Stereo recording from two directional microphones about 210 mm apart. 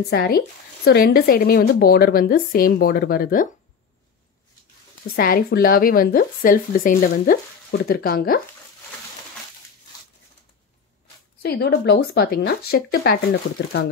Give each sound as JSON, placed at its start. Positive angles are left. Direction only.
{"t": 0.1, "sound": "speech", "side_deg": 45}
{"t": 5.1, "sound": "speech", "side_deg": 45}
{"t": 11.4, "sound": "speech", "side_deg": 50}